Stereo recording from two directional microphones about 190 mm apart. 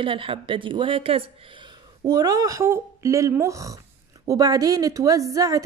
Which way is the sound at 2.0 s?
20° right (ahead or behind).